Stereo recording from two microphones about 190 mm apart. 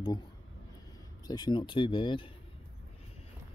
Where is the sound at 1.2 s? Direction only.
20° left (ahead or behind).